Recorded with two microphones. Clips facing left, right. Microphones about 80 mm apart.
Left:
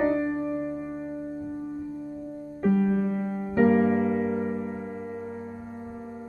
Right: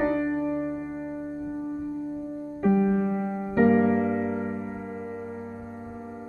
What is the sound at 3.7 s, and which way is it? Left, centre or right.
Music, centre.